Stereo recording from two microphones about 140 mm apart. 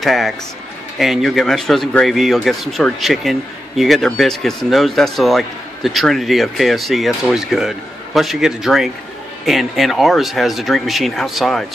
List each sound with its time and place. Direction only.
0.0 s speech: centre (ahead or behind)